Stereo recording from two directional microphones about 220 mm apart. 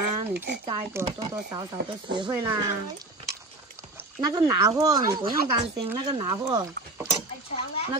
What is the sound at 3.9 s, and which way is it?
Speech, 15° right (ahead or behind).